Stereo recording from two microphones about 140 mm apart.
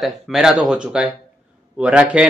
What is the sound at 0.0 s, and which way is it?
Speech, centre (ahead or behind).